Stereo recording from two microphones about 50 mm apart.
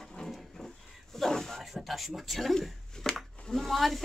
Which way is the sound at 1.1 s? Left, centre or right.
Centre.